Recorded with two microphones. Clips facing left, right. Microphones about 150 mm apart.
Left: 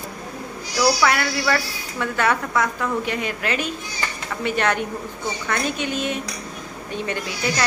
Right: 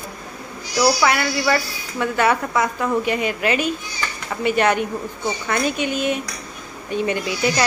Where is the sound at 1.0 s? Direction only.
5° right (ahead or behind).